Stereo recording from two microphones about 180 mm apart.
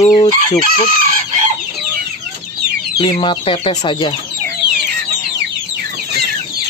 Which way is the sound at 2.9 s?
30° left (ahead or behind).